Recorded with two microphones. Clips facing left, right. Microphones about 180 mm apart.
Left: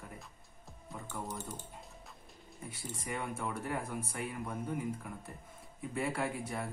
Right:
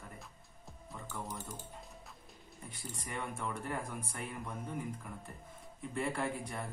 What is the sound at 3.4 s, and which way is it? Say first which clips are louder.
Speech: left 2 dB; 5° left (ahead or behind).